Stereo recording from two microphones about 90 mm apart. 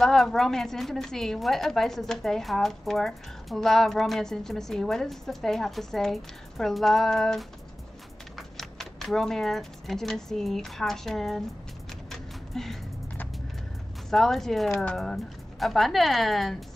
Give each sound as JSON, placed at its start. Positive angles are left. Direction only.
{"t": 0.0, "sound": "a woman's voice", "side_deg": 5}
{"t": 12.1, "sound": "a sound", "side_deg": 5}
{"t": 14.1, "sound": "a woman's voice", "side_deg": 5}